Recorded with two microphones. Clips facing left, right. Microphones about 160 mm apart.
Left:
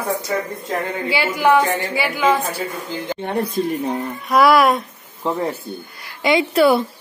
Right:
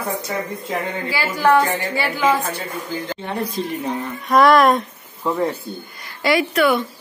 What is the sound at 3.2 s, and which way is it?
Speech, 55° left (ahead or behind).